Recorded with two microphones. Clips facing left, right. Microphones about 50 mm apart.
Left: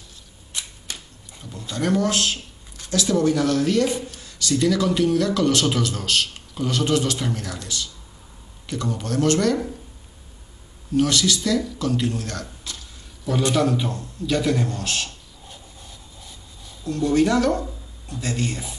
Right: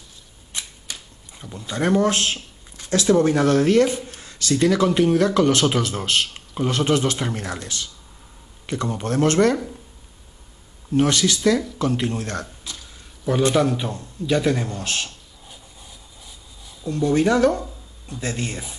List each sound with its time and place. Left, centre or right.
1.7 s speech: right
11.0 s speech: right
12.6 s a sound: centre
13.4 s speech: right
16.8 s speech: right